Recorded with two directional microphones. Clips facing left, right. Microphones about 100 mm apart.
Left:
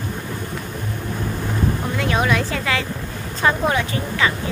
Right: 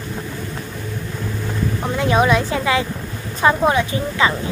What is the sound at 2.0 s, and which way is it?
A woman's voice, 20° right (ahead or behind).